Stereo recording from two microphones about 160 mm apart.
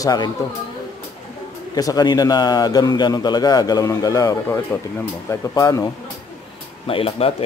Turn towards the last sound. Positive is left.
turn(degrees=35)  # may be behind; listen again after turning